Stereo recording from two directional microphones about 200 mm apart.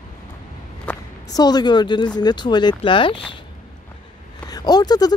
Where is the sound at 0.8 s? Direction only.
20° left (ahead or behind).